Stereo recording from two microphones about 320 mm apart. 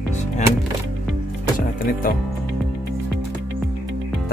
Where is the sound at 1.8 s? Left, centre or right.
Left.